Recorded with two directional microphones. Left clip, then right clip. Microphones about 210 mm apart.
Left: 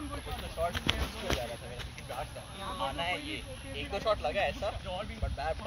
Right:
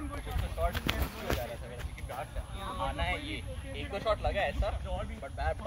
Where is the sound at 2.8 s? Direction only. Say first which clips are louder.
Left 1 dB; 50° left (ahead or behind).